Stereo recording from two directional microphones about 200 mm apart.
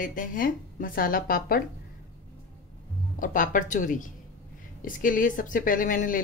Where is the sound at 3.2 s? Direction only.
40° left (ahead or behind).